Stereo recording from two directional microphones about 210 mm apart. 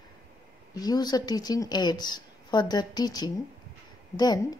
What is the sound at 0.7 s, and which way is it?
A woman's voice, 20° left (ahead or behind).